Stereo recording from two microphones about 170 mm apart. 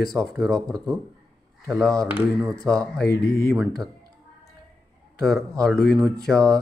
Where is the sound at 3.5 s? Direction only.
Centre (ahead or behind).